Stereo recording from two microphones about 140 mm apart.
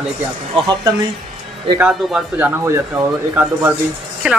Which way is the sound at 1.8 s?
5° right (ahead or behind).